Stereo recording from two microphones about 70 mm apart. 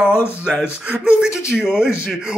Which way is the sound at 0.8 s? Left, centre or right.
Centre.